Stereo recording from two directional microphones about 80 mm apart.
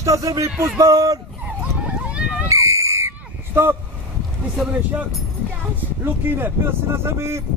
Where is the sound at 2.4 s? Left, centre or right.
Right.